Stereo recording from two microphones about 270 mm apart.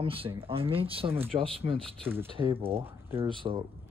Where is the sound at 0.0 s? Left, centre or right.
Centre.